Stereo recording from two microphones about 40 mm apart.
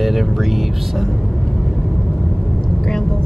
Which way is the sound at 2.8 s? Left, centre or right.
Centre.